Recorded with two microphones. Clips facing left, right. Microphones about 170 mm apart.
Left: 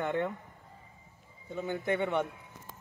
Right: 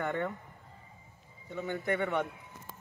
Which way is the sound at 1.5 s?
10° left (ahead or behind).